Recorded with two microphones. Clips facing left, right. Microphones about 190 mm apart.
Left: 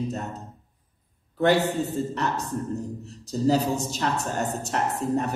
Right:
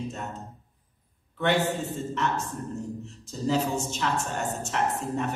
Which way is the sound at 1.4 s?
40° left (ahead or behind).